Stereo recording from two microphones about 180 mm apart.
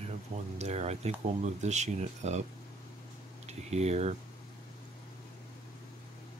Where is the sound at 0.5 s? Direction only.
40° right (ahead or behind).